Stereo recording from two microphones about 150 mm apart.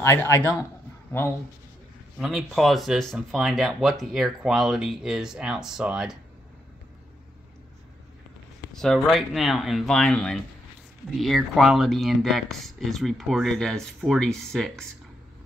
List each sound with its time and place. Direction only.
0.0 s a man's voice: 15° left (ahead or behind)
2.1 s speech: centre (ahead or behind)
8.7 s speech: centre (ahead or behind)